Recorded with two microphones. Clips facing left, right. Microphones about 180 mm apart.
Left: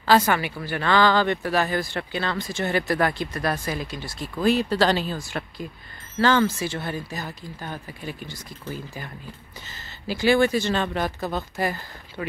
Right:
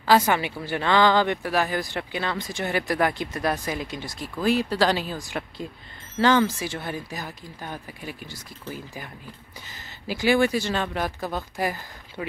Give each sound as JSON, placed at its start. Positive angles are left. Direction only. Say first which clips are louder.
{"t": 0.0, "sound": "speech", "louder": "even", "side_deg": -10}
{"t": 0.4, "sound": "speech", "louder": "even", "side_deg": -20}